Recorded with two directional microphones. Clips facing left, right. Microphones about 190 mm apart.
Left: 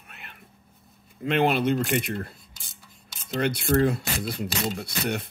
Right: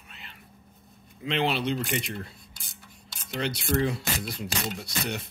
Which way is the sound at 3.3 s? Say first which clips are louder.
Left 5 dB; 55° left (ahead or behind).